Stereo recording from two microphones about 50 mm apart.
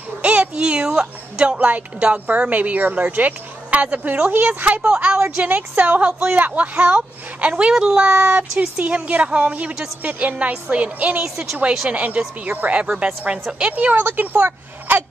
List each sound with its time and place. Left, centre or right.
0.2 s speech: right
7.7 s speech: centre
11.1 s speech: centre
11.9 s speech: right
13.9 s speech: right
14.2 s speech: right